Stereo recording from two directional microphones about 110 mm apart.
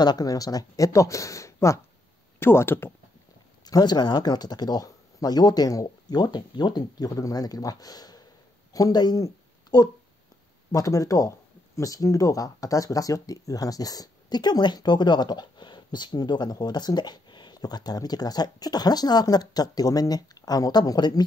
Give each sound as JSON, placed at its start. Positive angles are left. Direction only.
{"t": 0.0, "sound": "speech", "side_deg": 40}
{"t": 3.6, "sound": "speech", "side_deg": 40}